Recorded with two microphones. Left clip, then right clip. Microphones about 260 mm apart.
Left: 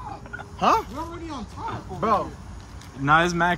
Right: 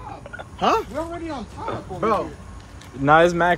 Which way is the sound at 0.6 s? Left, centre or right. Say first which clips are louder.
Even; left.